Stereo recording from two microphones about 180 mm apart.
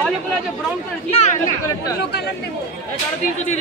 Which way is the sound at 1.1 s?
40° left (ahead or behind).